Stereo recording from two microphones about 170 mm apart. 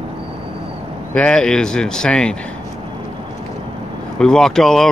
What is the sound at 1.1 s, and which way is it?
Speech, 5° left (ahead or behind).